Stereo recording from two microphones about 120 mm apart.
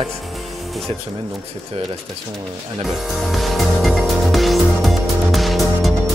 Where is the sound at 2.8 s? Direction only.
Centre (ahead or behind).